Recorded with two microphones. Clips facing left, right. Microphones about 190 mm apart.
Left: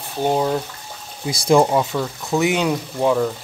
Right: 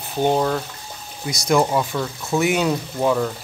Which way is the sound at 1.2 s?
30° left (ahead or behind).